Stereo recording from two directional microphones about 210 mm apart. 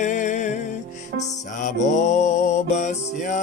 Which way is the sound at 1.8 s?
35° left (ahead or behind).